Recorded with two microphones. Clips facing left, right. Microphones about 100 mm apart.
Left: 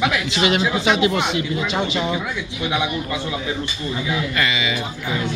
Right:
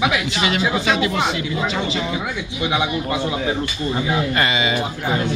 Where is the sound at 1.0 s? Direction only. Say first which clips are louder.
Left 1 dB; 35° right (ahead or behind).